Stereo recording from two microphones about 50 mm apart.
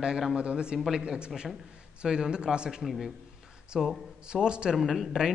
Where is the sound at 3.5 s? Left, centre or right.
Centre.